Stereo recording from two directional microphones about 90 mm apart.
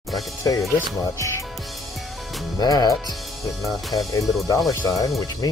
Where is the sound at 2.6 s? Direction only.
50° left (ahead or behind).